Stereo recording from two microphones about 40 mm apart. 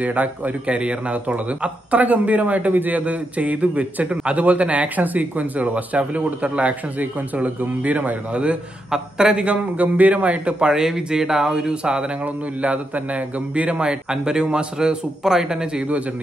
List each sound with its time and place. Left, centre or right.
0.0 s speech: right
8.9 s speech: centre
9.4 s speech: right
10.6 s speech: centre
12.6 s a man's voice: right; by 15.8 s centre